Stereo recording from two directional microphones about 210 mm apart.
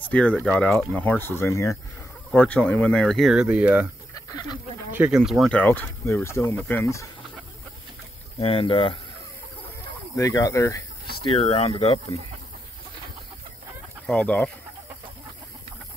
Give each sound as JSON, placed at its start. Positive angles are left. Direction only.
{"t": 0.1, "sound": "speech", "side_deg": 5}
{"t": 4.1, "sound": "a sound", "side_deg": 15}
{"t": 4.9, "sound": "speech", "side_deg": -5}
{"t": 8.4, "sound": "speech", "side_deg": 25}
{"t": 10.1, "sound": "speech", "side_deg": 15}
{"t": 11.2, "sound": "speech", "side_deg": 25}
{"t": 14.0, "sound": "speech", "side_deg": 5}